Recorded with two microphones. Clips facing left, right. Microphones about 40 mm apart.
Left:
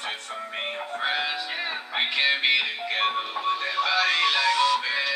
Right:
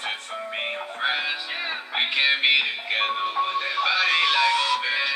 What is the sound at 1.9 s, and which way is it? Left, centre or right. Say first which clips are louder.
Music: right 2 dB; centre.